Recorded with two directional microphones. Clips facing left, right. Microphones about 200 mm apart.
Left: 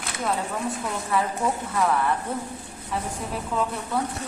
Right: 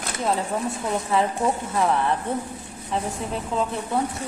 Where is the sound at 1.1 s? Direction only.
25° right (ahead or behind).